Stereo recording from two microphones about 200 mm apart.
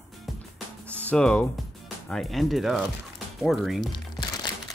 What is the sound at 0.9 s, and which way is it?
Speech, 5° left (ahead or behind).